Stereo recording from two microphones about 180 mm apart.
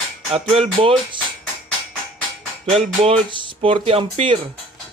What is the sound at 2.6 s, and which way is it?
Speech, 35° right (ahead or behind).